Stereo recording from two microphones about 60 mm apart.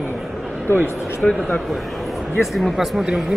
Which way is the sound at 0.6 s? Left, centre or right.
Left.